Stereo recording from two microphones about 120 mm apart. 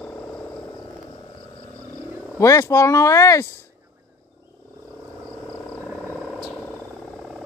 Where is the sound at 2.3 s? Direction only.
25° left (ahead or behind).